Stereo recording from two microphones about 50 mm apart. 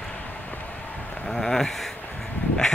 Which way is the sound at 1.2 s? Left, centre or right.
Centre.